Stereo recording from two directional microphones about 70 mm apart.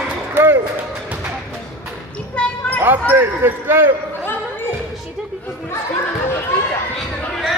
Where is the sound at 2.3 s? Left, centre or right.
Centre.